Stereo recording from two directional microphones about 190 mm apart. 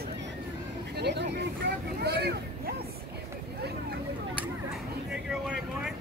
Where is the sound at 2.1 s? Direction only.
60° right (ahead or behind).